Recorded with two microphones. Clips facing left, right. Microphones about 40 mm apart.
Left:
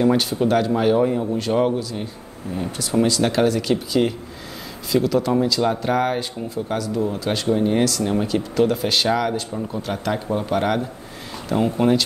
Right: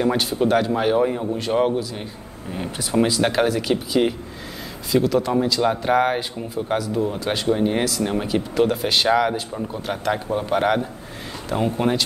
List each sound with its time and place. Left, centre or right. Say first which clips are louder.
0.0 s speech: left 2 dB; centre
2.5 s speech: even; right; by 12.0 s centre